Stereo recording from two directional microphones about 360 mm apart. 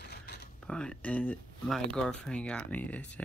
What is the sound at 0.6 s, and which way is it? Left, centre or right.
Speech, centre.